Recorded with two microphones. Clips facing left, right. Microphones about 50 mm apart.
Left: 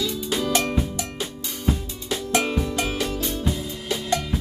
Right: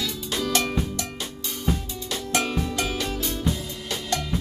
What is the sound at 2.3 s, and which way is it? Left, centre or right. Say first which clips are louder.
Music: left 2 dB; centre.